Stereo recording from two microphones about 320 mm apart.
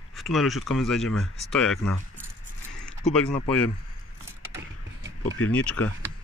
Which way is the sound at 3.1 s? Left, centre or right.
Centre.